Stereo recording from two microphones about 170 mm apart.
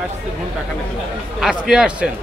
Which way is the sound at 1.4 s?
5° right (ahead or behind).